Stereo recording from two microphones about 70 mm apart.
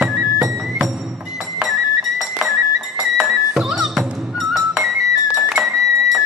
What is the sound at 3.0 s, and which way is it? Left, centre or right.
Music, centre.